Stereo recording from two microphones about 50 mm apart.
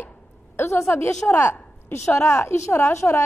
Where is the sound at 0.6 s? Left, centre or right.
Left.